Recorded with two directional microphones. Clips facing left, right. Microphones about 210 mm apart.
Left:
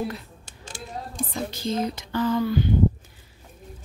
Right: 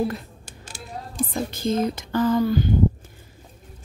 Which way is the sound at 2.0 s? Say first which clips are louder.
Right 3 dB; 45° right (ahead or behind).